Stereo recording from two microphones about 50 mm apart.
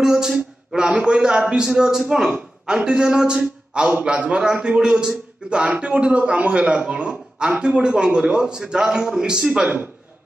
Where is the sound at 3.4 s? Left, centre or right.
Right.